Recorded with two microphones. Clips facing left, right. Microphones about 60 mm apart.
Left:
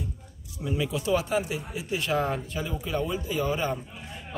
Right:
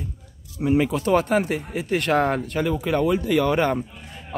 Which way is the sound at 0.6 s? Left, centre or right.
Right.